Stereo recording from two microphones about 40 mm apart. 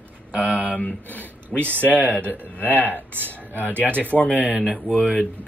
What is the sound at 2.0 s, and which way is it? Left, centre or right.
Speech, left.